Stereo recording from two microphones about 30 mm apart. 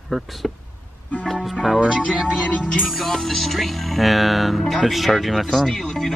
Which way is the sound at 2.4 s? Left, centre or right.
Left.